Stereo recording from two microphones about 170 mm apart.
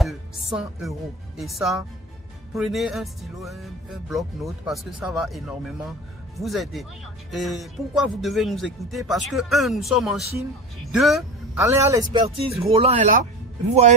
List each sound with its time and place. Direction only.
0.0 s music: centre (ahead or behind)
1.4 s speech: centre (ahead or behind)
11.5 s speech: 15° right (ahead or behind)
12.7 s speech: 40° right (ahead or behind)